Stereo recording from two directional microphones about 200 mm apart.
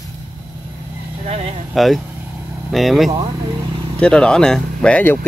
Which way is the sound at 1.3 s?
30° right (ahead or behind).